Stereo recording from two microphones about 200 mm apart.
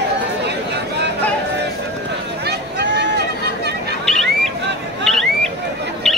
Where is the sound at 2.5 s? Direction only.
60° right (ahead or behind).